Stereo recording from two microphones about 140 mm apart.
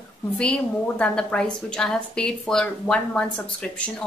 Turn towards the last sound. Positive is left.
turn(degrees=5)  # may be behind; listen again after turning